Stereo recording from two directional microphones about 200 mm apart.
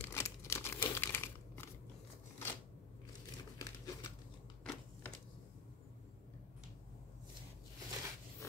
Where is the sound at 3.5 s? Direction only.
15° left (ahead or behind).